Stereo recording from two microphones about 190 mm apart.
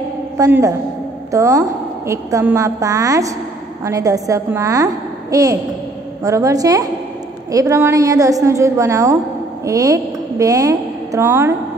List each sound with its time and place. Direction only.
0.4 s a woman's voice: 15° right (ahead or behind)